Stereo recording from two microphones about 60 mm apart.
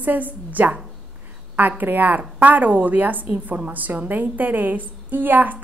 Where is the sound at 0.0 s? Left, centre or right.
Right.